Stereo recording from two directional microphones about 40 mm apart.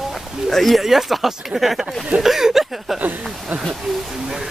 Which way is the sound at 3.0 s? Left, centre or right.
Right.